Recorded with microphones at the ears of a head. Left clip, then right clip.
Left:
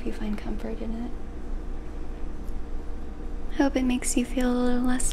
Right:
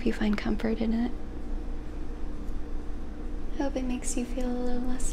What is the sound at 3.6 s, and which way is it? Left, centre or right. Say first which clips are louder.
Speech: left 7 dB; left.